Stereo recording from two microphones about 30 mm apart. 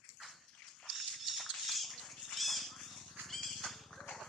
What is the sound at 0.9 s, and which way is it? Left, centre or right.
Dog, centre.